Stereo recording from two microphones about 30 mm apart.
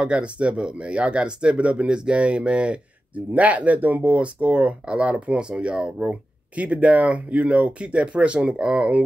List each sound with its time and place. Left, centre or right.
0.0 s speech: right
2.1 s speech: right
3.3 s speech: right
6.5 s speech: right
8.5 s speech: right